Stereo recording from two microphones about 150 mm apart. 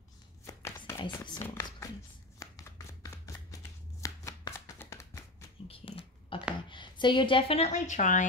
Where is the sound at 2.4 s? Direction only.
20° left (ahead or behind).